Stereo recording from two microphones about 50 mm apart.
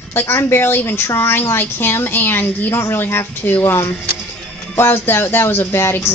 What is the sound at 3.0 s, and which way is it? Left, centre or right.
Speech, left.